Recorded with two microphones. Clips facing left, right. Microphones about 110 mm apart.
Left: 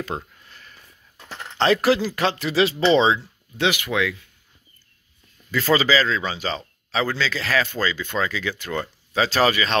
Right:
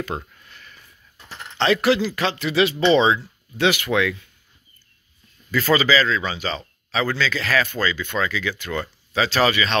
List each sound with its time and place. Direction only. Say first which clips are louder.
0.1 s speech: even; 5° right (ahead or behind)
0.5 s sniff: right 1 dB; 35° left (ahead or behind)
1.6 s speech: even; 35° left (ahead or behind); by 3.9 s 20° left (ahead or behind)
5.5 s speech: right 1 dB; 25° left (ahead or behind)